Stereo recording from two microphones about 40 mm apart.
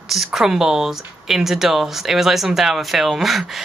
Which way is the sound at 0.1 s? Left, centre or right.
Centre.